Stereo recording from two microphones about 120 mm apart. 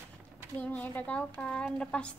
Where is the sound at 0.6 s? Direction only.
15° left (ahead or behind).